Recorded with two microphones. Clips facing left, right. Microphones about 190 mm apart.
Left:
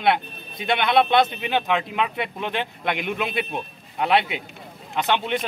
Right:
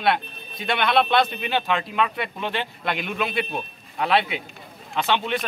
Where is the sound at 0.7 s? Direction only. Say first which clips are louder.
Left 2 dB; 20° left (ahead or behind).